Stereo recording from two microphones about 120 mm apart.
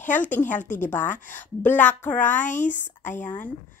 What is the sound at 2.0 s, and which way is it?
Speech, 90° left.